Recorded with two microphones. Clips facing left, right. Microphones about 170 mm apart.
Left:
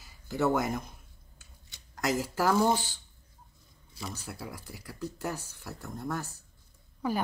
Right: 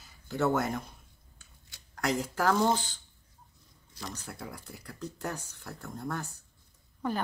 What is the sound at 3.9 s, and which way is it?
Speech, 5° left (ahead or behind).